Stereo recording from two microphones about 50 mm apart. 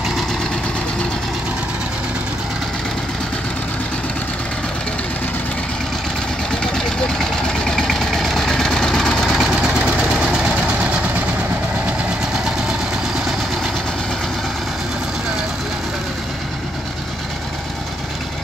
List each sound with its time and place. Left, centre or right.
6.6 s vehicle: centre
9.6 s vehicle: right